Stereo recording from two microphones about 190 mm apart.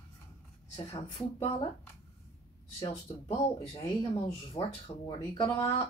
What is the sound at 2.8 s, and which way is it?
Speech, 35° left (ahead or behind).